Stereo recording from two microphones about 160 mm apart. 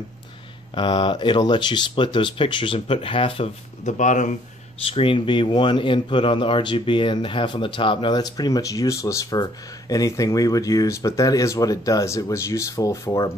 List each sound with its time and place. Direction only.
0.7 s speech: 30° left (ahead or behind)
4.0 s speech: 50° left (ahead or behind)
4.8 s a man's voice: 35° left (ahead or behind); by 13.3 s 20° left (ahead or behind)